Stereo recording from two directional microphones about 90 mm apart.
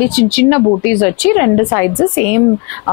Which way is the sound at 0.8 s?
15° left (ahead or behind).